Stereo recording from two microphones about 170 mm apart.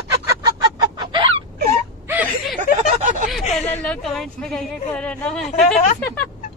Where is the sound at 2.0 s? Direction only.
10° right (ahead or behind).